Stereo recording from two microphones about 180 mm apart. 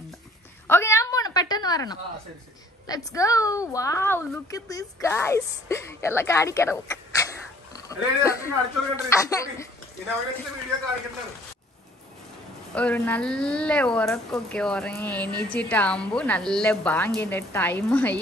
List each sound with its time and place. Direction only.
0.7 s a sound: 15° left (ahead or behind)
2.9 s a woman's voice: 20° left (ahead or behind)
12.7 s a woman's voice: 5° left (ahead or behind)